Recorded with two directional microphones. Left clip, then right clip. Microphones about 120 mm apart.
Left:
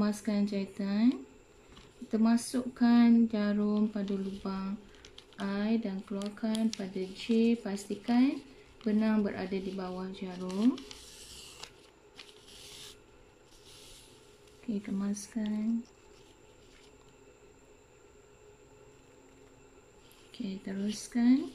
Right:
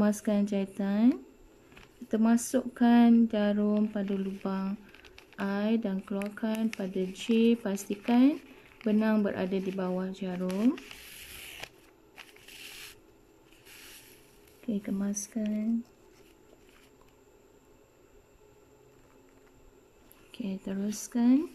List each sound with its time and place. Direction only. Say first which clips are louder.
0.0 s speech: right 4 dB; 25° right (ahead or behind)
15.0 s speech: right 3 dB; 20° right (ahead or behind)
20.3 s speech: right 3 dB; 25° right (ahead or behind)